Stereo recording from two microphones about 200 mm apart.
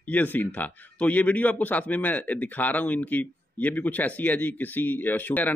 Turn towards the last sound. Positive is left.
turn(degrees=10)  # may be behind; listen again after turning